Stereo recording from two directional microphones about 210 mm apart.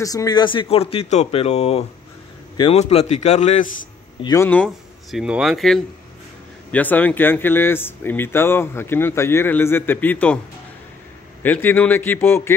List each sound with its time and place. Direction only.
0.0 s a man's voice: 15° left (ahead or behind); by 3.7 s 35° left (ahead or behind)
4.2 s speech: 15° left (ahead or behind)
11.4 s speech: 10° left (ahead or behind)